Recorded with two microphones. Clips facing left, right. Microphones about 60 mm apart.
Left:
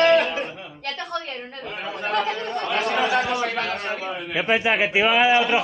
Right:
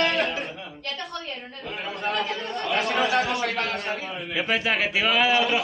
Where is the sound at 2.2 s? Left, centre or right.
Centre.